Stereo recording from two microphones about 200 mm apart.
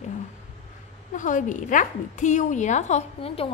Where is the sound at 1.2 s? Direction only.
40° left (ahead or behind).